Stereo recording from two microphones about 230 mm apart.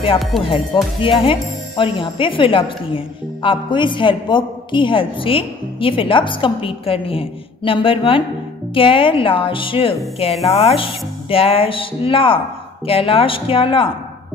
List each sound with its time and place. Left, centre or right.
1.0 s a woman's voice: left